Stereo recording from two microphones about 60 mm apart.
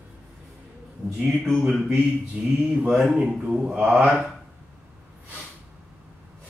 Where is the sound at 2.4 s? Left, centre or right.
Right.